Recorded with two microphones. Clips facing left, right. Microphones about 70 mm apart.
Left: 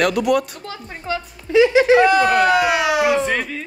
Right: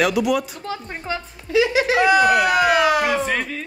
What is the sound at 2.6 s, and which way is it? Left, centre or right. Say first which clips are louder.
Speech: even; right.